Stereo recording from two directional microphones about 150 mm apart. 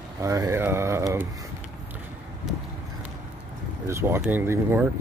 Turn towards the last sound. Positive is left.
turn(degrees=-15)  # may be behind; listen again after turning